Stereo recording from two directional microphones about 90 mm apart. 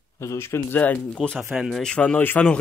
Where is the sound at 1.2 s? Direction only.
5° right (ahead or behind).